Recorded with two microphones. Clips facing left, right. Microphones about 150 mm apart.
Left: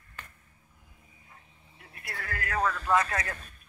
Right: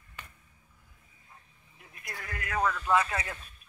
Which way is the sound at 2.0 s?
15° right (ahead or behind).